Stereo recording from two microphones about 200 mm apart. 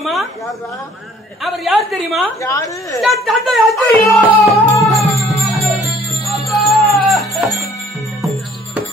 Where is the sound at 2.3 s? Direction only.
15° left (ahead or behind).